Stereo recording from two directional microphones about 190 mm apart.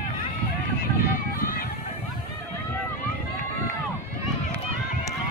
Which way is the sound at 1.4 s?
50° left (ahead or behind).